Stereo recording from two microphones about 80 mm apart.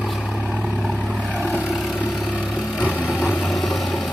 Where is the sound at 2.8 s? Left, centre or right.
Left.